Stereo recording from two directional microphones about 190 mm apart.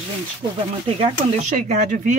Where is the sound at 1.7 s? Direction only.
40° right (ahead or behind).